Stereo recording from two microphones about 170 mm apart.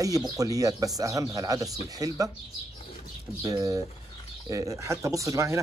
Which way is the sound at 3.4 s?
20° right (ahead or behind).